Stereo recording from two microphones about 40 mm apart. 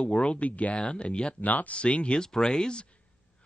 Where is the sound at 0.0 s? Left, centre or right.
Left.